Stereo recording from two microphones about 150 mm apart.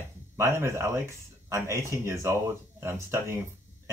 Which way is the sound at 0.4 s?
20° right (ahead or behind).